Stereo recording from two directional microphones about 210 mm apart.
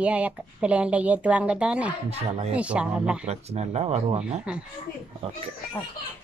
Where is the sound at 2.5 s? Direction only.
5° right (ahead or behind).